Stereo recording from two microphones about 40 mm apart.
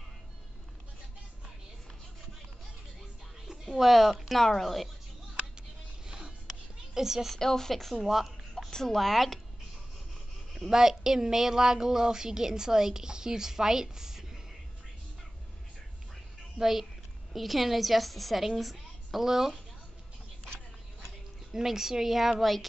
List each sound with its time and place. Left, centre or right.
3.4 s a sound: centre
3.9 s a woman's voice: centre
6.0 s music: centre
6.9 s a woman's voice: centre
7.3 s speech: centre
8.6 s a woman's voice: centre
10.5 s speech: centre
16.5 s a woman's voice: centre
18.6 s a sound: centre
19.2 s speech: centre
21.5 s speech: centre